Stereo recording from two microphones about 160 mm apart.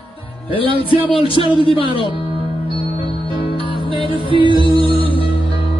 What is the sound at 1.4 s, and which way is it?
Speech, 30° left (ahead or behind).